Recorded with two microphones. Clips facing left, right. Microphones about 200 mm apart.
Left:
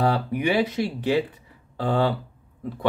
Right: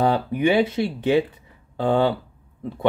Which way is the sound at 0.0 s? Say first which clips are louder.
Right 3 dB; 25° right (ahead or behind).